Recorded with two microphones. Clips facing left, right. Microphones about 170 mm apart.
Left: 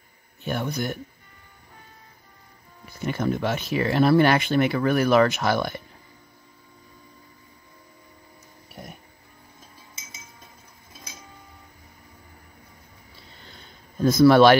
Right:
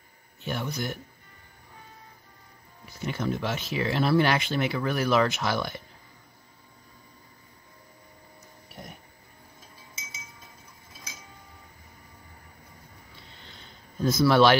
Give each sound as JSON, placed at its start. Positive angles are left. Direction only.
{"t": 0.4, "sound": "speech", "side_deg": 50}
{"t": 3.0, "sound": "speech", "side_deg": 55}
{"t": 14.0, "sound": "speech", "side_deg": 50}